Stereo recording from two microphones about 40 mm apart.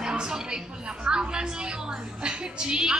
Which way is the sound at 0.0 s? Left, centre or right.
Centre.